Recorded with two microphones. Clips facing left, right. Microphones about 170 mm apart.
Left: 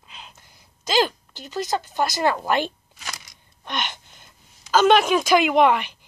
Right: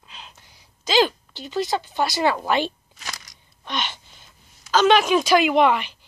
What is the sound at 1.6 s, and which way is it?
Speech, 45° left (ahead or behind).